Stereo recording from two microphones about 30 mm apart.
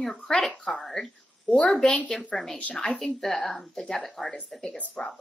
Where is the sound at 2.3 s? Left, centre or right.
Left.